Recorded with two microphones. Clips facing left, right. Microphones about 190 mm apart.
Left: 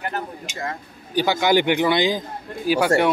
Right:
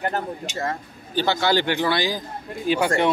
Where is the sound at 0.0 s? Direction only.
40° right (ahead or behind).